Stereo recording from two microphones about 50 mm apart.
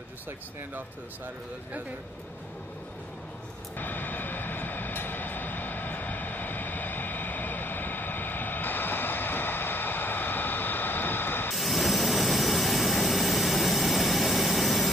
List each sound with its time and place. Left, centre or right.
3.7 s vehicle: left
11.5 s jet engine: centre